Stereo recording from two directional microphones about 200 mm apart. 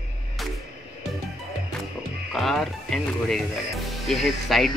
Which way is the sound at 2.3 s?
Centre (ahead or behind).